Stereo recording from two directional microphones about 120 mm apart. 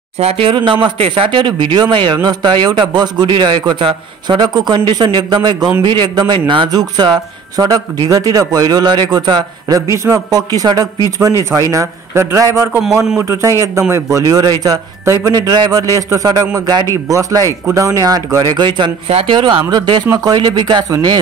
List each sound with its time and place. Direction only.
0.2 s a man's voice: 55° right (ahead or behind); by 18.7 s 35° right (ahead or behind)
19.0 s speech: 55° right (ahead or behind)
19.3 s a man's voice: 40° right (ahead or behind)